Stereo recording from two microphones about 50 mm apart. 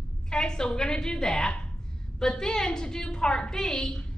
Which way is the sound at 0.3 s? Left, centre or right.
Centre.